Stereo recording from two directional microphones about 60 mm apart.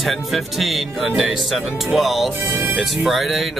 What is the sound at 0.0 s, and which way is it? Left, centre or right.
Speech, centre.